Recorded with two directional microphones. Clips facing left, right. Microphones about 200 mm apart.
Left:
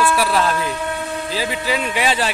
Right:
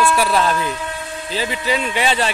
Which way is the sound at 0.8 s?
60° left (ahead or behind).